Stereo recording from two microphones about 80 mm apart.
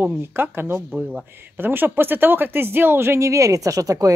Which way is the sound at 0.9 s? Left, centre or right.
Centre.